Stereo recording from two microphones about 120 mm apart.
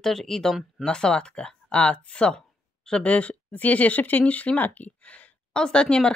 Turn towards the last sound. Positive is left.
turn(degrees=5)  # may be behind; listen again after turning